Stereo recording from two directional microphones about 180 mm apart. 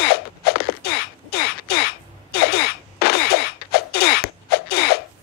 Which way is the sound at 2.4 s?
60° left (ahead or behind).